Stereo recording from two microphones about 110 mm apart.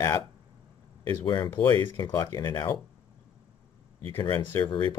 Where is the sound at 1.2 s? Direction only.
40° left (ahead or behind).